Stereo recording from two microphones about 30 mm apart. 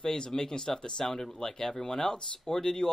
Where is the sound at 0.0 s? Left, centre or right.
Left.